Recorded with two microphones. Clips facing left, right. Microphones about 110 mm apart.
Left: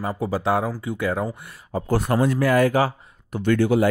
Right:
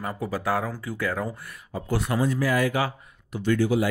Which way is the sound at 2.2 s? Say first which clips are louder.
Left 5 dB; 60° left (ahead or behind).